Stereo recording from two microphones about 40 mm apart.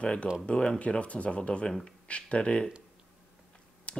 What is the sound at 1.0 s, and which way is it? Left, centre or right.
Speech, left.